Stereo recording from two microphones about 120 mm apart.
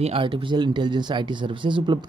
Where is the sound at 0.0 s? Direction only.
50° right (ahead or behind).